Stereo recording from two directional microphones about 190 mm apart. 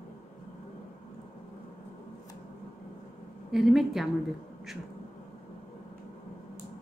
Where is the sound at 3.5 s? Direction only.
Centre (ahead or behind).